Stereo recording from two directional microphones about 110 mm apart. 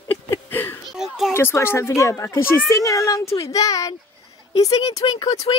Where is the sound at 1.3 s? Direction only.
20° left (ahead or behind).